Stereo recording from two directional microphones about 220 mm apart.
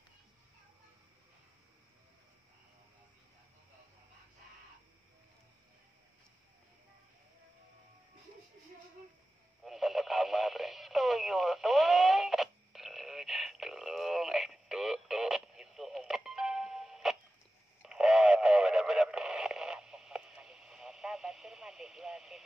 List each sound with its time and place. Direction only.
9.7 s radio: centre (ahead or behind)